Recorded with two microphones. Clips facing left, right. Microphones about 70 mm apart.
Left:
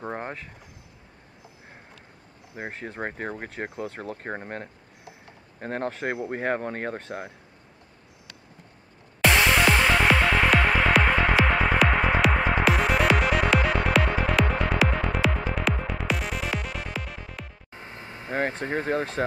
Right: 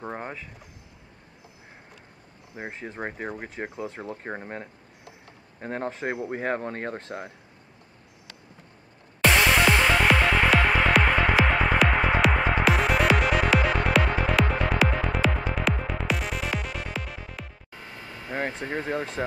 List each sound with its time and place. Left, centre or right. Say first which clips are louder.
0.0 s a sound: left 2 dB; centre
2.8 s speech: left 1 dB; centre
6.2 s speech: left 2 dB; centre
9.2 s music: even; centre
17.6 s vehicle: left 1 dB; left
18.6 s speech: left 3 dB; centre